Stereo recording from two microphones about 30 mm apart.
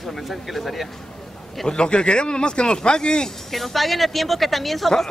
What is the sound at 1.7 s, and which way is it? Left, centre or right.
Speech, left.